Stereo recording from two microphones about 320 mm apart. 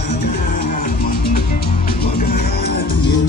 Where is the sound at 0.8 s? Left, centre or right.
Left.